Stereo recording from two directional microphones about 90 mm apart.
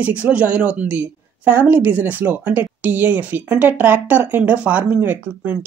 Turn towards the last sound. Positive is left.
turn(degrees=-20)  # may be behind; listen again after turning